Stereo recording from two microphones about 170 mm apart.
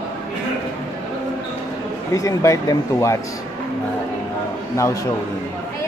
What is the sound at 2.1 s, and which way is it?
Speech, 20° left (ahead or behind).